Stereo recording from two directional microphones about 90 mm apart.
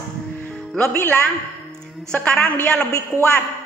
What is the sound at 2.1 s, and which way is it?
Speech, 10° left (ahead or behind).